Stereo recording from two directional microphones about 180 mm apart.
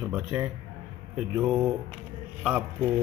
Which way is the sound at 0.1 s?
5° right (ahead or behind).